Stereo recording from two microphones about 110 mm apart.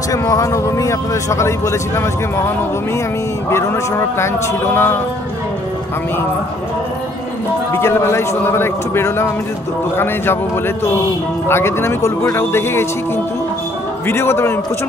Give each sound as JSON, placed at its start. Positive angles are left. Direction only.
{"t": 0.1, "sound": "speech", "side_deg": 30}
{"t": 7.8, "sound": "speech", "side_deg": 25}
{"t": 14.0, "sound": "speech", "side_deg": 20}